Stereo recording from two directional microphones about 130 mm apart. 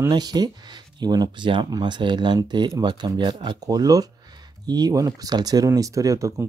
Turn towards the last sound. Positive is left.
turn(degrees=-25)  # may be behind; listen again after turning